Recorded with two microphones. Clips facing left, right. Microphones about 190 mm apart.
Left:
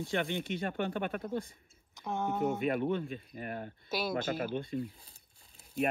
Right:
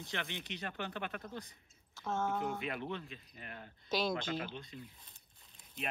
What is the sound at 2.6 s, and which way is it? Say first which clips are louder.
Speech: left 10 dB; 50° left (ahead or behind).